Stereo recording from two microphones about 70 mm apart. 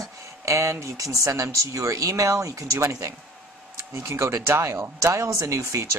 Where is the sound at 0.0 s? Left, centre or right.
Right.